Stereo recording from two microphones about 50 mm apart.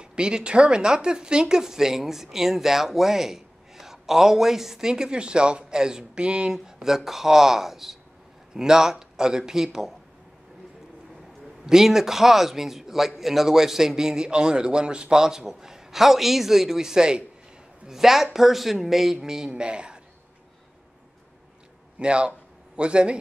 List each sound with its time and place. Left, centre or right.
0.0 s speech: centre
11.6 s a man's voice: centre
21.9 s a man's voice: right